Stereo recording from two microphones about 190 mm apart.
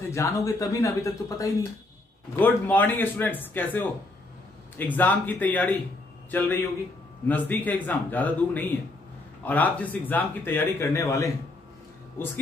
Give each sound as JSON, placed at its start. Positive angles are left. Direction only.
{"t": 0.1, "sound": "speech", "side_deg": 15}